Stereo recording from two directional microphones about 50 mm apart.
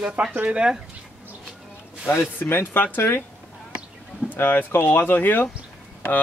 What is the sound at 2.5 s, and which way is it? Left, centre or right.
Speech, left.